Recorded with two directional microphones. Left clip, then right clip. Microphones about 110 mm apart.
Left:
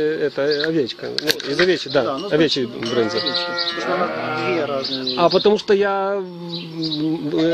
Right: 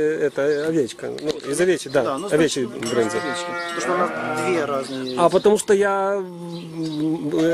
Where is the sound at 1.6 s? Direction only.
10° right (ahead or behind).